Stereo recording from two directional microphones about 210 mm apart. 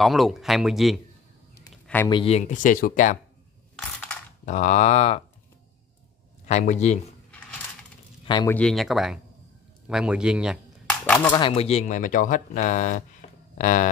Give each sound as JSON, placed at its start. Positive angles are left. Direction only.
{"t": 0.0, "sound": "speech", "side_deg": 0}
{"t": 2.0, "sound": "speech", "side_deg": 25}
{"t": 3.7, "sound": "mechanisms", "side_deg": 5}
{"t": 4.5, "sound": "speech", "side_deg": 35}
{"t": 6.4, "sound": "speech", "side_deg": 35}
{"t": 8.3, "sound": "speech", "side_deg": 20}
{"t": 8.5, "sound": "speech", "side_deg": 0}
{"t": 11.1, "sound": "speech", "side_deg": 10}
{"t": 11.4, "sound": "speech", "side_deg": 30}